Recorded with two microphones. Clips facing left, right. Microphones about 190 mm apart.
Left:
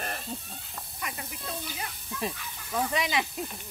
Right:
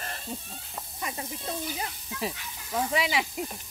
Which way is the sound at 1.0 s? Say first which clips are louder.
Right 3 dB; 25° right (ahead or behind).